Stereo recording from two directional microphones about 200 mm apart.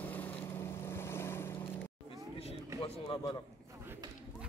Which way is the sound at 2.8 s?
25° left (ahead or behind).